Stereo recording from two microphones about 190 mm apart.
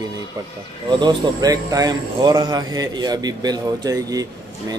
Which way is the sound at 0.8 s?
25° right (ahead or behind).